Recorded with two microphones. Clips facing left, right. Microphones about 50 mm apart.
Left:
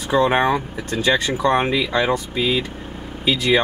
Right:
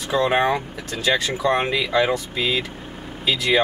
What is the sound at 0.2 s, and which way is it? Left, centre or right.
Speech, centre.